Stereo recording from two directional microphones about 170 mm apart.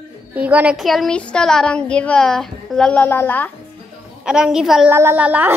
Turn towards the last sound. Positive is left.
turn(degrees=-10)  # may be behind; listen again after turning